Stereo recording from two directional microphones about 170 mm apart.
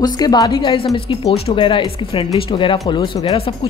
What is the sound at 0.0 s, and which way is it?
A woman's voice, 25° left (ahead or behind).